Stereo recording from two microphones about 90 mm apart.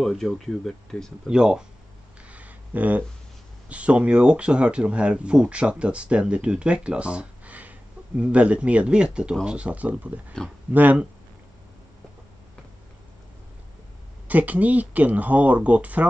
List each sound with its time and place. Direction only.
0.0 s speech: centre (ahead or behind)
1.2 s speech: 10° right (ahead or behind)
2.2 s a sound: 15° right (ahead or behind)
3.6 s speech: 15° right (ahead or behind)
10.4 s speech: 10° left (ahead or behind)
10.7 s speech: 20° right (ahead or behind)
14.2 s speech: 15° right (ahead or behind)